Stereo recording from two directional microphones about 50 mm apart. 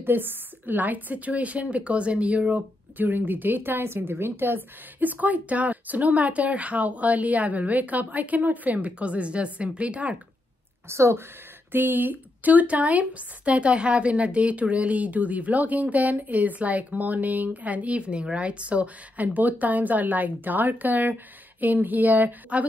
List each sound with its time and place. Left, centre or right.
0.0 s a woman's voice: right
10.9 s a woman's voice: right
11.7 s a woman's voice: right